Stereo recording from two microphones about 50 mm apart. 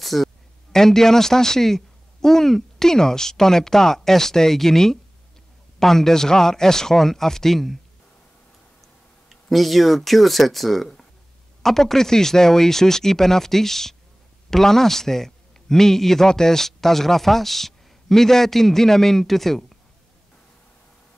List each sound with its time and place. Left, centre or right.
0.0 s a sound: centre
0.7 s a man's voice: centre
9.3 s a man's voice: centre